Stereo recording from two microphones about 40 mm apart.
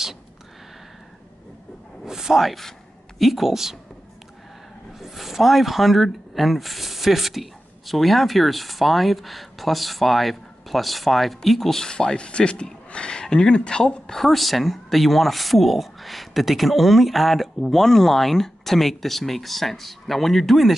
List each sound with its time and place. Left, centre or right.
2.0 s a sound: centre
3.2 s speech: centre
4.9 s speech: centre
11.8 s speech: centre
14.2 s speech: centre